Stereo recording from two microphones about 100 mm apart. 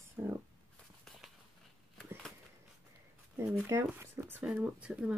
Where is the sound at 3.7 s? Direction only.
25° right (ahead or behind).